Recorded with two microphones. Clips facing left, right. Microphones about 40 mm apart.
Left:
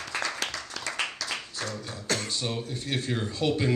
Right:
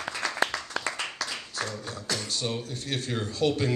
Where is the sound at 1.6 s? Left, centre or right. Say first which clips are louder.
Right 1 dB; centre.